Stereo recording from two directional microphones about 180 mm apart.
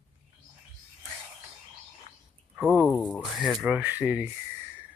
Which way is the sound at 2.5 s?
5° right (ahead or behind).